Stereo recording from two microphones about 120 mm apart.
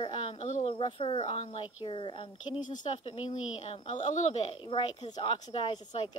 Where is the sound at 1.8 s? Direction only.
45° left (ahead or behind).